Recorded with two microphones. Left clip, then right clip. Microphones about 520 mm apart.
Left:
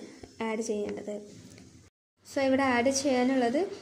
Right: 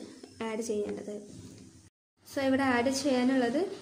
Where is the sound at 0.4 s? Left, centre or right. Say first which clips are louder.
Left 1 dB; left.